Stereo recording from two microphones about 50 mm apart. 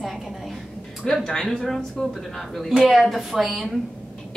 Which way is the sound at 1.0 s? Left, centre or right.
Centre.